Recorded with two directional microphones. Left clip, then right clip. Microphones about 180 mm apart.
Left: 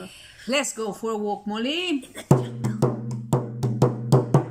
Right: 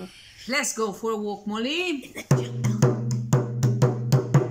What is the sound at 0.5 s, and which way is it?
Speech, 10° left (ahead or behind).